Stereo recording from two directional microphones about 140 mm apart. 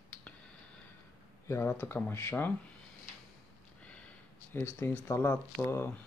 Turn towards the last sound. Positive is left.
turn(degrees=15)  # may be behind; listen again after turning